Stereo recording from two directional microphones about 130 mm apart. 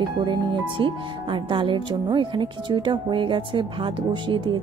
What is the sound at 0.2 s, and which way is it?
Speech, 40° right (ahead or behind).